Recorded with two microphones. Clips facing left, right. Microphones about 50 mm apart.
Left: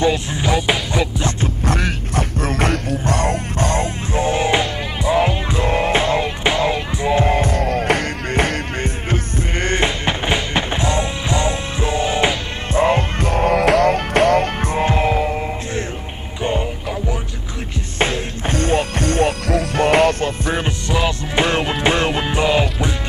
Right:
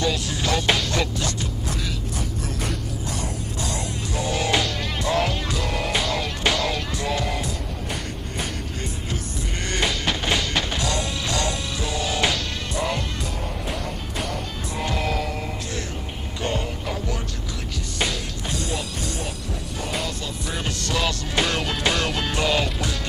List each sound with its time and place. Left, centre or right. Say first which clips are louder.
0.0 s music: left 6 dB; left
1.7 s music: left 8 dB; left
7.6 s music: left 13 dB; left
13.3 s music: left 15 dB; left
14.7 s music: left 6 dB; left
17.9 s music: left 7 dB; left
20.6 s music: left 5 dB; left